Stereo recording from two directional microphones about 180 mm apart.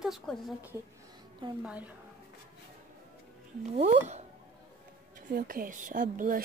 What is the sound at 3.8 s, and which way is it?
Speech, 40° right (ahead or behind).